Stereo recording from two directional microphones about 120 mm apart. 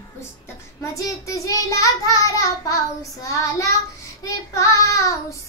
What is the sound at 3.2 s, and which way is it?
Child singing, 25° left (ahead or behind).